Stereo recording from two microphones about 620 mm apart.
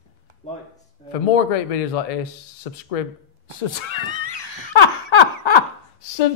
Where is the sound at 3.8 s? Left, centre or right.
Left.